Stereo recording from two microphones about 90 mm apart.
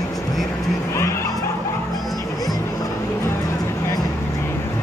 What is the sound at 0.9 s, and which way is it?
Vehicle, 30° left (ahead or behind).